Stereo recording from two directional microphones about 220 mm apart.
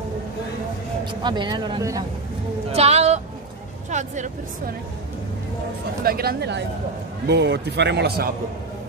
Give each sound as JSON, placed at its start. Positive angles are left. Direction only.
{"t": 1.2, "sound": "speech", "side_deg": -20}
{"t": 2.7, "sound": "speech", "side_deg": -30}
{"t": 6.0, "sound": "a man's voice", "side_deg": -45}